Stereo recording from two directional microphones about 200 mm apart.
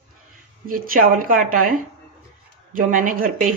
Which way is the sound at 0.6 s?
45° right (ahead or behind).